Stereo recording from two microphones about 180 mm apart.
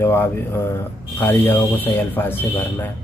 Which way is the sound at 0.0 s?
15° left (ahead or behind).